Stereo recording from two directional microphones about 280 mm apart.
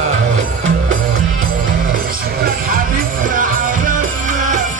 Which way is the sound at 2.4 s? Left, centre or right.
Right.